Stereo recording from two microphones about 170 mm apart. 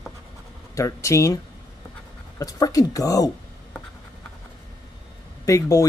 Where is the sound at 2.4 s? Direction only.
20° left (ahead or behind).